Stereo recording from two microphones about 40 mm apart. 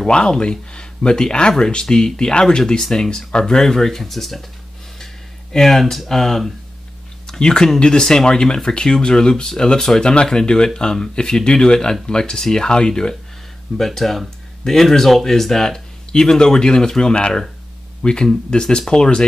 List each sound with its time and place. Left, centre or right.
0.0 s speech: left
7.2 s speech: centre
13.7 s speech: centre